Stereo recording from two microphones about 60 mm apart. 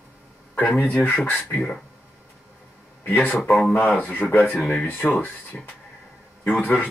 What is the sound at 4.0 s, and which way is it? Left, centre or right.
Speech, left.